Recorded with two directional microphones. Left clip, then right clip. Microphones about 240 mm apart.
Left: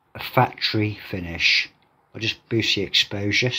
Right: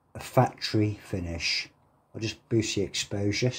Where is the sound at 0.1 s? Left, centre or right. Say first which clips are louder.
Left 5 dB; centre.